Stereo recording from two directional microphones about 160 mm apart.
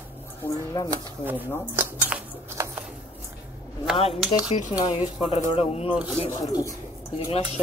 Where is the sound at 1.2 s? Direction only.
10° right (ahead or behind).